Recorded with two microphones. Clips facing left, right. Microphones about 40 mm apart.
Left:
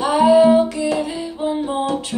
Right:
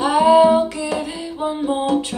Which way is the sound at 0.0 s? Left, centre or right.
Centre.